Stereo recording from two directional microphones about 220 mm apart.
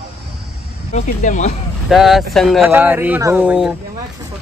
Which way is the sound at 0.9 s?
35° left (ahead or behind).